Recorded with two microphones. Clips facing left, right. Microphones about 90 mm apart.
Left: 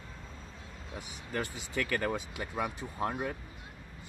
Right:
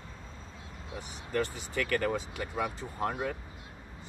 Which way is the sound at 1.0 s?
15° left (ahead or behind).